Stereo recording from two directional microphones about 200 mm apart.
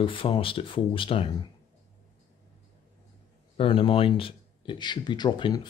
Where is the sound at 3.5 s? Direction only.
25° left (ahead or behind).